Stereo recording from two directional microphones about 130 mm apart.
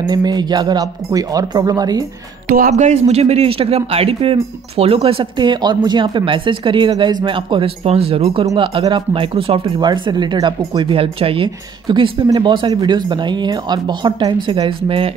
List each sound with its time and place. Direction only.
0.0 s speech: 30° right (ahead or behind)
2.6 s a man's voice: 65° right (ahead or behind); by 9.8 s 45° right (ahead or behind)
9.8 s speech: 35° right (ahead or behind)